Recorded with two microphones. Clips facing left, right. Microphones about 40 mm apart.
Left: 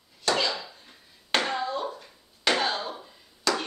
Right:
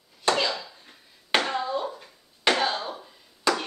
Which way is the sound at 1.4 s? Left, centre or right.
Centre.